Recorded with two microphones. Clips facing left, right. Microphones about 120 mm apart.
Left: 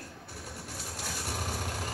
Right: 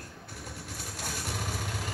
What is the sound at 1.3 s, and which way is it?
Vehicle, 35° left (ahead or behind).